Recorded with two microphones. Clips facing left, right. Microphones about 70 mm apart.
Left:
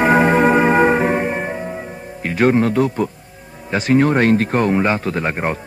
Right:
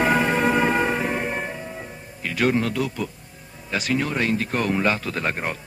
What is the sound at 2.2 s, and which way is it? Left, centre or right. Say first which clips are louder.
Speech: left 7 dB; left.